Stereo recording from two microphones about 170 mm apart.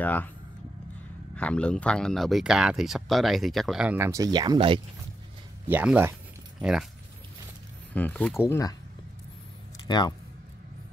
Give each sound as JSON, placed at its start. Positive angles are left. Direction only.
{"t": 0.0, "sound": "speech", "side_deg": 10}
{"t": 1.3, "sound": "speech", "side_deg": 5}
{"t": 4.0, "sound": "speech", "side_deg": -20}
{"t": 5.7, "sound": "speech", "side_deg": -10}
{"t": 7.9, "sound": "speech", "side_deg": 10}
{"t": 9.8, "sound": "speech", "side_deg": 25}